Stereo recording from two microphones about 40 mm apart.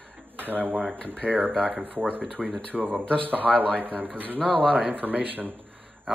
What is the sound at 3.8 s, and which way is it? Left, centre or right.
Speech, right.